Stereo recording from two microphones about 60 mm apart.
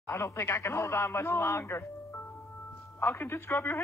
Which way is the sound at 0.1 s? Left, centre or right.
Left.